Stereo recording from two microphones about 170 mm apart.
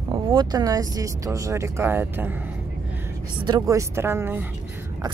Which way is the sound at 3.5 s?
20° right (ahead or behind).